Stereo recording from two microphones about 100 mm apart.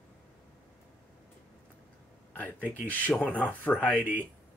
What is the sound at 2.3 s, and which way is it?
Speech, 15° left (ahead or behind).